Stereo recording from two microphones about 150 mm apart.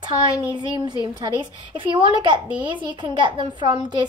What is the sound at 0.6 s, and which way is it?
A woman's voice, 30° right (ahead or behind).